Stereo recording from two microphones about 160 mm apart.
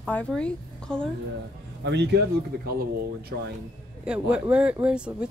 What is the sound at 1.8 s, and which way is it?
Speech, 90° right.